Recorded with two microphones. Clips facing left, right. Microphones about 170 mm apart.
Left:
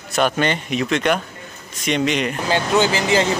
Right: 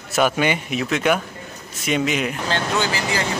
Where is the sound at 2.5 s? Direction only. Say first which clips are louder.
Left 7 dB; 20° left (ahead or behind).